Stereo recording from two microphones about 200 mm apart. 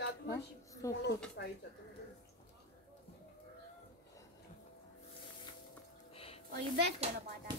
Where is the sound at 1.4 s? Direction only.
60° left (ahead or behind).